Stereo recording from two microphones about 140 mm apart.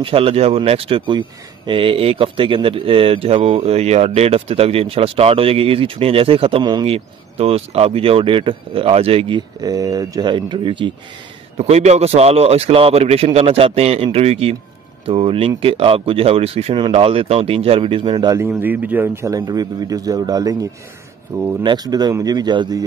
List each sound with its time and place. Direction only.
0.0 s speech: 45° right (ahead or behind)
9.6 s a man's voice: 25° right (ahead or behind)
11.5 s a man's voice: 50° right (ahead or behind)
18.6 s speech: 10° right (ahead or behind)
19.2 s a man's voice: 25° right (ahead or behind)
21.6 s a man's voice: 30° right (ahead or behind)